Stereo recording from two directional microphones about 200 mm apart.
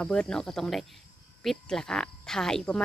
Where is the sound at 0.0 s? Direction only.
5° left (ahead or behind).